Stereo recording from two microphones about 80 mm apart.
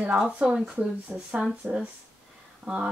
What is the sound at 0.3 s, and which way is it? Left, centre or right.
Speech, centre.